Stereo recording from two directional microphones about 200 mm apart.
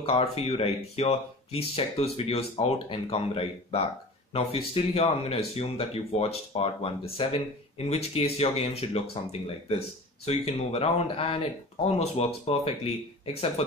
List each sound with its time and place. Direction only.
0.0 s speech: 30° left (ahead or behind)